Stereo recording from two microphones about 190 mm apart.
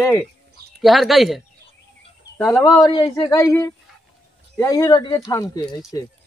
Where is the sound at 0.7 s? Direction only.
Centre (ahead or behind).